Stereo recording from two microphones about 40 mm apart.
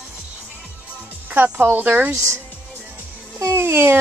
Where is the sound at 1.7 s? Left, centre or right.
Right.